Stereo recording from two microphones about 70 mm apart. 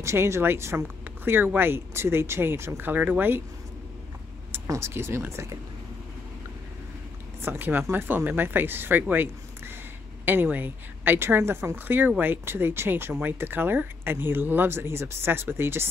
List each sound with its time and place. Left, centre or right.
0.0 s speech: right
4.7 s speech: right
7.4 s a woman's voice: right